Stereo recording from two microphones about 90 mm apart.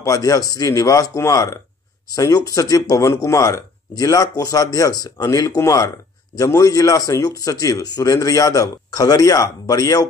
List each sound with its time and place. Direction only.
0.0 s speech: 40° left (ahead or behind)